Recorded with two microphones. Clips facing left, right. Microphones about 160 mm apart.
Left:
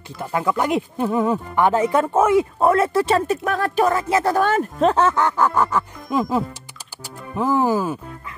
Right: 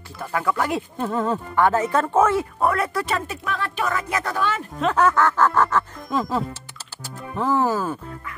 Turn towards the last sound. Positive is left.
turn(degrees=10)  # may be behind; listen again after turning